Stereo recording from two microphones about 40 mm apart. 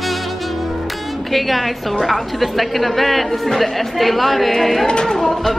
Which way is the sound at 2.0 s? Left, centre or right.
Centre.